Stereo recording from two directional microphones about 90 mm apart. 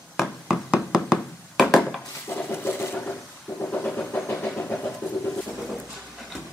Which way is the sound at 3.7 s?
15° left (ahead or behind).